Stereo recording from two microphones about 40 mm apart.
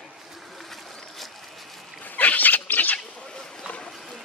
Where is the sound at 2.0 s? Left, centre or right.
Left.